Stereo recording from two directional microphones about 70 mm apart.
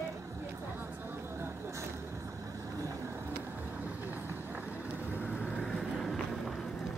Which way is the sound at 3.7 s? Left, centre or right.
Right.